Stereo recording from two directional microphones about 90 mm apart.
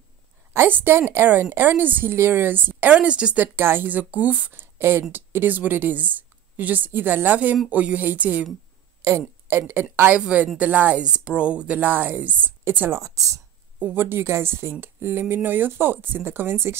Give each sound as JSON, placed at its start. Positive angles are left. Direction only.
{"t": 0.5, "sound": "speech", "side_deg": -25}
{"t": 3.5, "sound": "speech", "side_deg": -25}
{"t": 9.5, "sound": "speech", "side_deg": -25}
{"t": 13.7, "sound": "speech", "side_deg": -20}